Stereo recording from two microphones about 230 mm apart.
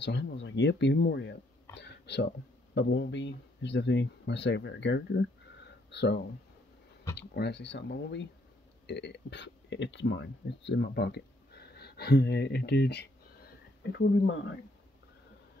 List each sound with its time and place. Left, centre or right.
0.0 s speech: left